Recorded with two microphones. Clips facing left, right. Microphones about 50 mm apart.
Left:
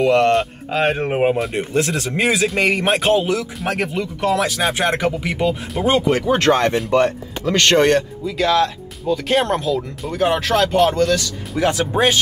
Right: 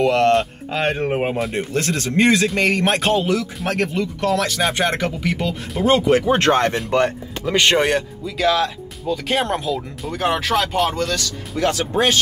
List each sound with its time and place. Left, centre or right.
0.0 s a man's voice: centre
6.3 s speech: right
7.4 s speech: centre